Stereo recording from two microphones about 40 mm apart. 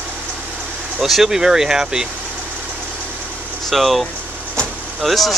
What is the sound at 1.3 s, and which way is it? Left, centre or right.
Speech, centre.